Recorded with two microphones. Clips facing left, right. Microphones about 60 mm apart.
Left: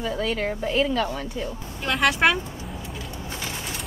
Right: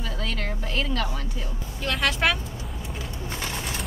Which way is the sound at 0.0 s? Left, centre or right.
Centre.